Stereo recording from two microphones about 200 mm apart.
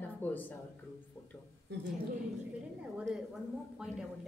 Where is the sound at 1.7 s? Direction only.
55° right (ahead or behind).